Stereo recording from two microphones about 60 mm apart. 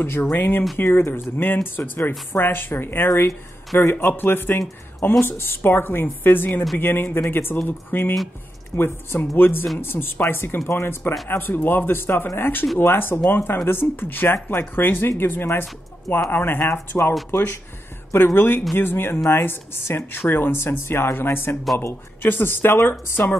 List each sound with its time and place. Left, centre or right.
0.0 s speech: left